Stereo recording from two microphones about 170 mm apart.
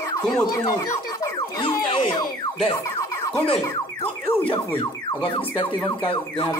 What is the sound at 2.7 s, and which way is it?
Music, 20° left (ahead or behind).